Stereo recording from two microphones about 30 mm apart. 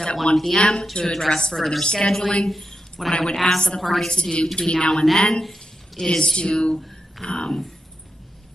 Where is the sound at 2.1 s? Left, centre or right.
Centre.